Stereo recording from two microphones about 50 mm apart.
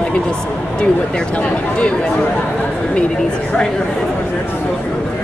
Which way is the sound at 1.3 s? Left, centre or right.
Left.